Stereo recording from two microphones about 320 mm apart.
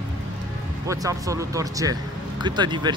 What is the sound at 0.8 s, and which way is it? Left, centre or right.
Speech, centre.